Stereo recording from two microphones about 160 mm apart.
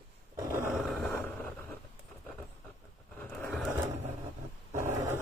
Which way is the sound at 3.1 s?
10° left (ahead or behind).